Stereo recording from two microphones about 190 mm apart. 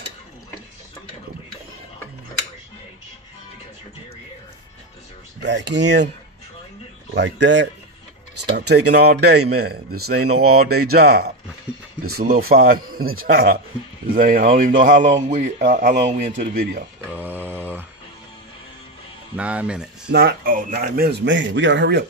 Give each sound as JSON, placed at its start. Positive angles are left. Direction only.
{"t": 5.4, "sound": "speech", "side_deg": -65}
{"t": 7.2, "sound": "speech", "side_deg": -70}
{"t": 16.1, "sound": "speech", "side_deg": -50}
{"t": 17.1, "sound": "mantra", "side_deg": -10}
{"t": 19.3, "sound": "speech", "side_deg": -5}
{"t": 20.1, "sound": "speech", "side_deg": -60}